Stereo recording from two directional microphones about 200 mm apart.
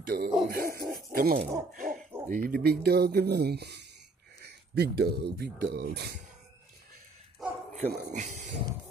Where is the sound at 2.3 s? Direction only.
45° right (ahead or behind).